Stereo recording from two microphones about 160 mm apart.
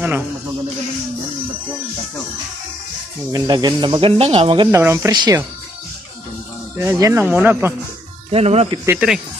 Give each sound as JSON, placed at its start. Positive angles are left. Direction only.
{"t": 3.3, "sound": "speech", "side_deg": -25}
{"t": 4.6, "sound": "speech", "side_deg": -15}
{"t": 5.1, "sound": "speech", "side_deg": -25}
{"t": 6.8, "sound": "speech", "side_deg": -20}
{"t": 8.3, "sound": "speech", "side_deg": -40}
{"t": 8.8, "sound": "speech", "side_deg": -5}